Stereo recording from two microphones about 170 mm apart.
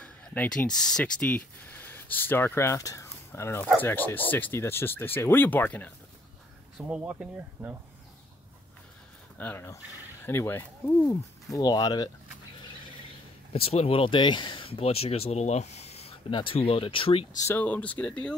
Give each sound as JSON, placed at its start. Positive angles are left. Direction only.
{"t": 0.0, "sound": "a sound", "side_deg": 10}
{"t": 0.8, "sound": "speech", "side_deg": 5}
{"t": 6.8, "sound": "speech", "side_deg": -5}
{"t": 9.4, "sound": "speech", "side_deg": 10}
{"t": 13.5, "sound": "speech", "side_deg": 35}
{"t": 17.4, "sound": "speech", "side_deg": 15}